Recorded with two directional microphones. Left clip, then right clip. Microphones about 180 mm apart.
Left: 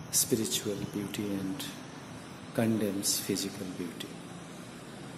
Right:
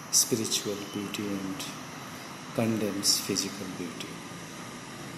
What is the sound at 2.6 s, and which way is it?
Speech, 15° left (ahead or behind).